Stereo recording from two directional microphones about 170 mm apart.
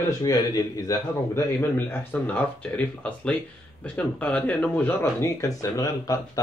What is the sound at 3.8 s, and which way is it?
A man's voice, 5° left (ahead or behind).